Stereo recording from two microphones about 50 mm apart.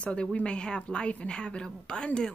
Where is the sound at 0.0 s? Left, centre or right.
Centre.